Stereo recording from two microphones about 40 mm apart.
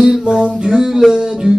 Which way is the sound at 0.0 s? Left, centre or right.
Centre.